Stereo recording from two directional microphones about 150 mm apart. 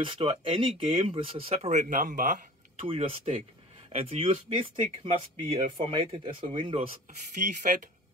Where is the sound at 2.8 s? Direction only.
40° right (ahead or behind).